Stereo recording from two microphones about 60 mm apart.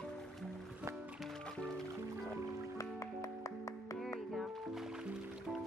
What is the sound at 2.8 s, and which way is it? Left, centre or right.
Music, left.